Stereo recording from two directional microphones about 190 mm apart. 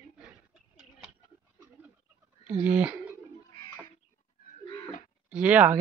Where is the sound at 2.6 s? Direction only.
5° right (ahead or behind).